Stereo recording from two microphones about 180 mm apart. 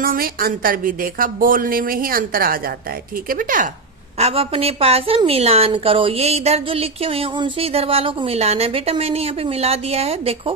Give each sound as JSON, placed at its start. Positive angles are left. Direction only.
{"t": 0.0, "sound": "a woman's voice", "side_deg": -55}
{"t": 4.2, "sound": "a woman's voice", "side_deg": -35}